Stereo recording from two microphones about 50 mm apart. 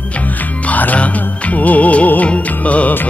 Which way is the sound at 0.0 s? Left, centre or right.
Left.